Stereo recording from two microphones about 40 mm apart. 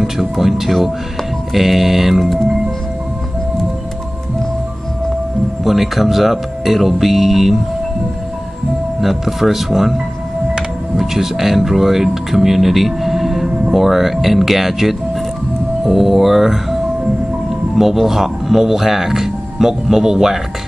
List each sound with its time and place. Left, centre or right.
0.0 s music: centre
1.5 s speech: centre
5.6 s speech: centre
9.0 s speech: centre
11.0 s speech: centre
17.7 s speech: centre